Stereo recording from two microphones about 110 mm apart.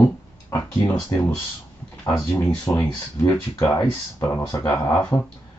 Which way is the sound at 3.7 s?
25° left (ahead or behind).